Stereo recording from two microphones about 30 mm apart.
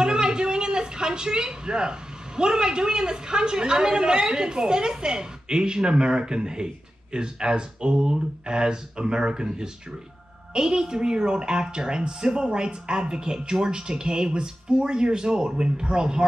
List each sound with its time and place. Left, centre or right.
0.0 s a woman's voice: right